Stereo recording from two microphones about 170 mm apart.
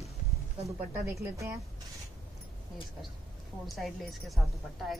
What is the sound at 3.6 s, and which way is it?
Speech, centre (ahead or behind).